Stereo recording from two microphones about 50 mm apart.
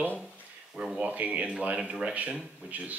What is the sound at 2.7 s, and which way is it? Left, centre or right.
Speech, right.